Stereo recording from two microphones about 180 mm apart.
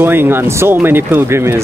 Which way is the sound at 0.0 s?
10° right (ahead or behind).